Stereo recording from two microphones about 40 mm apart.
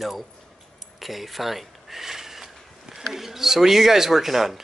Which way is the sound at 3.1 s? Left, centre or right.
Centre.